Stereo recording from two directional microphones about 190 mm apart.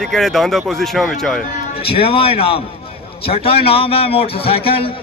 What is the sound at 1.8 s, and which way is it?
A man's voice, 30° left (ahead or behind).